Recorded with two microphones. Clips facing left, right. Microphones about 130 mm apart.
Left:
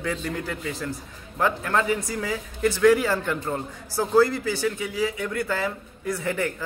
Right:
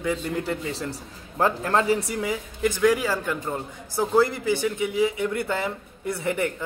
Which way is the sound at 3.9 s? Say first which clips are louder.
Left 1 dB; 20° right (ahead or behind).